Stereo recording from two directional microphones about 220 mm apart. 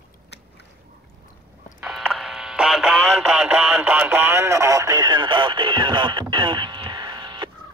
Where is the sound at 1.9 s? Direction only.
Centre (ahead or behind).